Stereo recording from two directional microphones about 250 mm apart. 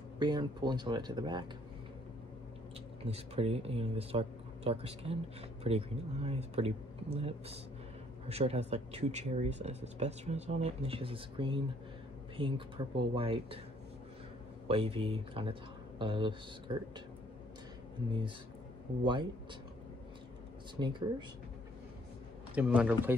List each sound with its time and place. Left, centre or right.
0.2 s speech: centre
3.1 s speech: right
14.7 s speech: right
18.9 s speech: centre
20.8 s speech: centre
22.6 s speech: centre